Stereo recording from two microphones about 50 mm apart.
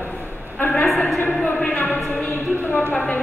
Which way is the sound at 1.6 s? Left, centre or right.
Left.